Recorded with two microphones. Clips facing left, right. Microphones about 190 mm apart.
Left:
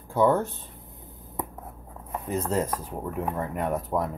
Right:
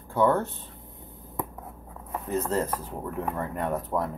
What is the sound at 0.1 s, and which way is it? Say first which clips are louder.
Speech: left 1 dB; 10° left (ahead or behind).